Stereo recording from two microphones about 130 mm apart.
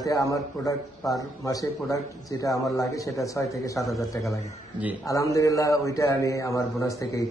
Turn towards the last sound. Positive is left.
turn(degrees=25)  # may be behind; listen again after turning